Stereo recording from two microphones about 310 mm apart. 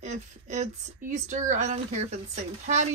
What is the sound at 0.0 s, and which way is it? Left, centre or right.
Speech, right.